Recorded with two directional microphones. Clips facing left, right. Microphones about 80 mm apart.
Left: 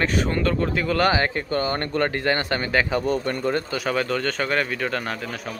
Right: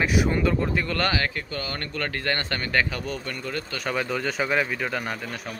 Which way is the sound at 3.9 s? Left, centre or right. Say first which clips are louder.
Left 2 dB; centre.